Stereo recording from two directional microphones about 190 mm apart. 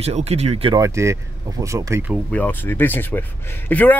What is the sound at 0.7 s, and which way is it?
Speech, 15° right (ahead or behind).